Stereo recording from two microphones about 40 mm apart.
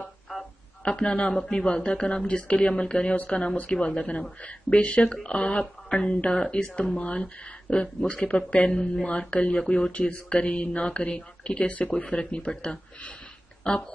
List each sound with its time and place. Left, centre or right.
0.8 s speech: left